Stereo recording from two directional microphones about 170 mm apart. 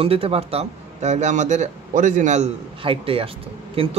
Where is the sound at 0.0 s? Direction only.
35° right (ahead or behind).